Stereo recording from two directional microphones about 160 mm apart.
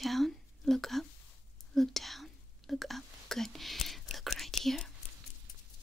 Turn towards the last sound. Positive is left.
turn(degrees=0)  # may be behind; listen again after turning